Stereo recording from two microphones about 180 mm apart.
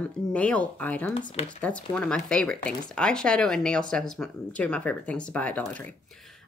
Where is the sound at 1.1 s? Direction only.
25° left (ahead or behind).